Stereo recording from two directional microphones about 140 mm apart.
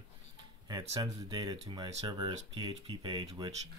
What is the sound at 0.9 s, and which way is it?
Speech, 30° right (ahead or behind).